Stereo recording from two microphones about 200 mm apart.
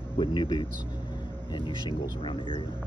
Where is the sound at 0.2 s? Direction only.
20° left (ahead or behind).